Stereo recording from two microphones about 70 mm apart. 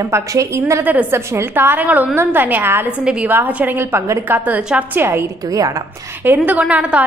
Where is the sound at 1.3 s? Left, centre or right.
Right.